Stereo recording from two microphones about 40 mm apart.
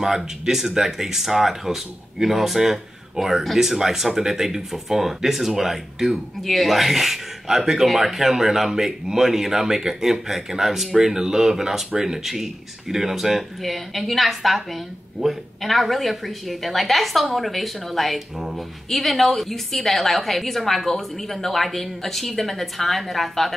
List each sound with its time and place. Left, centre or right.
0.0 s a woman's voice: centre